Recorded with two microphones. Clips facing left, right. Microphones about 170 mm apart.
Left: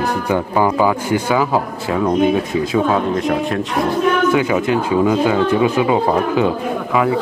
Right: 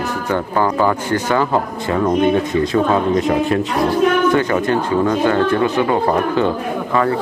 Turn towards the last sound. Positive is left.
turn(degrees=5)  # may be behind; listen again after turning